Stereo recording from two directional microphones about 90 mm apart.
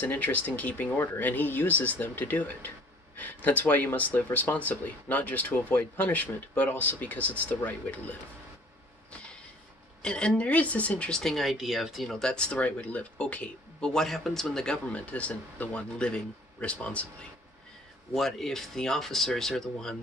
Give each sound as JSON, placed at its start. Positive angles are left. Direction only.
{"t": 0.0, "sound": "speech", "side_deg": 20}
{"t": 10.0, "sound": "speech", "side_deg": 10}
{"t": 18.1, "sound": "speech", "side_deg": 5}